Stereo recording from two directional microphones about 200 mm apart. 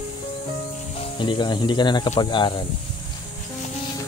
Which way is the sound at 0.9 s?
25° left (ahead or behind).